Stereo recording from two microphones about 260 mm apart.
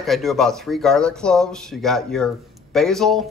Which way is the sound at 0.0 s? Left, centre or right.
Centre.